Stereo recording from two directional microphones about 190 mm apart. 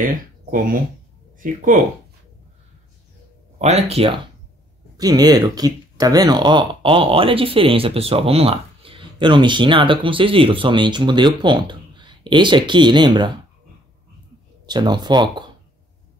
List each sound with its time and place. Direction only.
0.0 s speech: 45° right (ahead or behind)
3.5 s speech: 35° right (ahead or behind)
4.9 s speech: 20° right (ahead or behind)
14.7 s speech: 20° right (ahead or behind)